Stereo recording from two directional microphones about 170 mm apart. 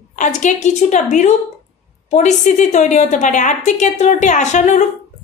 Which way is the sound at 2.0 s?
45° left (ahead or behind).